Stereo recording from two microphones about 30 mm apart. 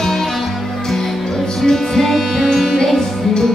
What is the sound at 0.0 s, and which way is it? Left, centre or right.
Music, centre.